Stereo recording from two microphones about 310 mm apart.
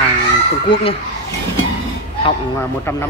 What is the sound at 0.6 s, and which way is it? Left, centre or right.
Speech, centre.